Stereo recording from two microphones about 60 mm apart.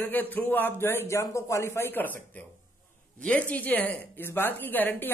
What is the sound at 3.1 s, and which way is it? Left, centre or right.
A woman's voice, centre.